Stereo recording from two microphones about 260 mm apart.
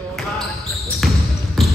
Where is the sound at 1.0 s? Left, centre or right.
Centre.